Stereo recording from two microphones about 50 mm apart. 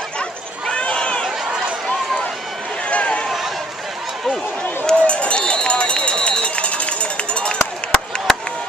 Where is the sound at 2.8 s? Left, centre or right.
Left.